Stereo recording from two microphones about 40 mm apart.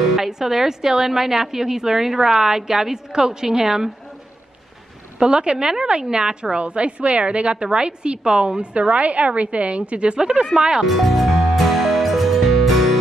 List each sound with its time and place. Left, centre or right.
0.1 s a woman's voice: centre
5.2 s a woman's voice: right
10.9 s music: centre